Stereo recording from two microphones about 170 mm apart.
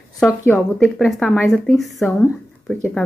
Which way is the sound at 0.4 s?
15° left (ahead or behind).